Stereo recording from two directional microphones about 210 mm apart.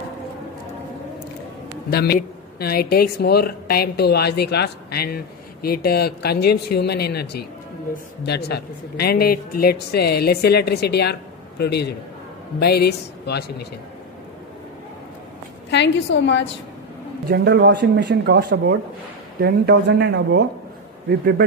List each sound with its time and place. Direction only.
1.9 s speech: 50° left (ahead or behind)
15.7 s a woman's voice: 55° left (ahead or behind)
17.3 s speech: 50° right (ahead or behind)